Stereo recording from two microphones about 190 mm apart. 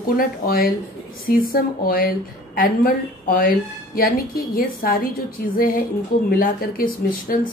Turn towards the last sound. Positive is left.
turn(degrees=50)  # may be behind; listen again after turning